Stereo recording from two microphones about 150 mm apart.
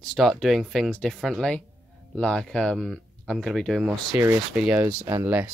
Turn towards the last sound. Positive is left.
turn(degrees=-20)  # may be behind; listen again after turning